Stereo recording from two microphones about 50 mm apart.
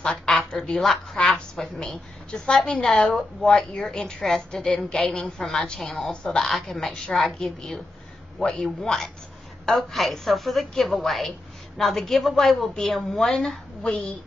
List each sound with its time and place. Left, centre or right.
0.0 s speech: centre
1.2 s speech: centre
1.8 s a woman's voice: centre
3.0 s speech: left
3.5 s a woman's voice: centre
4.6 s a woman's voice: centre
8.6 s a woman's voice: centre